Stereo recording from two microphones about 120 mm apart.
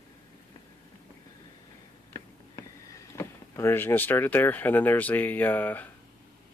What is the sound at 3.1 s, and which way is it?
Speech, 20° left (ahead or behind).